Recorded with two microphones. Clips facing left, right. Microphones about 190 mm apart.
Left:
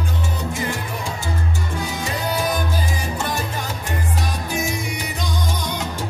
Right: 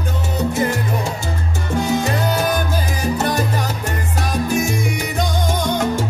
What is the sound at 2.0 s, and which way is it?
Salsa music, 50° right (ahead or behind).